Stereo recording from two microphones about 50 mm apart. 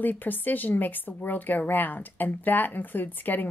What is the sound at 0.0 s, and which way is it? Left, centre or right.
Speech, left.